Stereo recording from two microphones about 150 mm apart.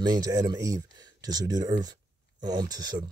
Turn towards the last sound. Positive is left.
turn(degrees=-25)  # may be behind; listen again after turning